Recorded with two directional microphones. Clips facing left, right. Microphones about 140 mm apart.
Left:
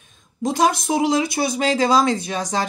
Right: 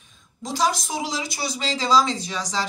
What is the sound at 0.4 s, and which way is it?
Speech, 55° left (ahead or behind).